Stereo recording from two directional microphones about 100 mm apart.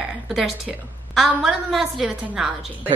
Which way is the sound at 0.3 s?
5° right (ahead or behind).